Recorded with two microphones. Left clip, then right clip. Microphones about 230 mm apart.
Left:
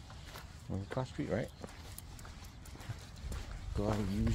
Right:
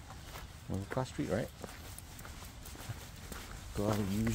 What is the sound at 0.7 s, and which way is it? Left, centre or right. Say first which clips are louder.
Speech: right 2 dB; centre.